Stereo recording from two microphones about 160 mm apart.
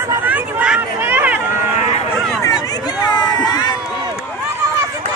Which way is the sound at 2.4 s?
25° left (ahead or behind).